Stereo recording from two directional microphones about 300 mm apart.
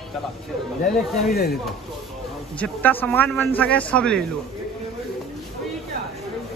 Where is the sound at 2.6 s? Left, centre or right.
Centre.